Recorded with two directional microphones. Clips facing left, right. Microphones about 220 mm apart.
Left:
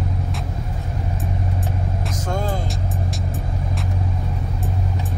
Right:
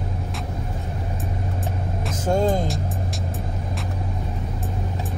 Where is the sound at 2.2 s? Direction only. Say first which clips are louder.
Right 7 dB; 25° right (ahead or behind).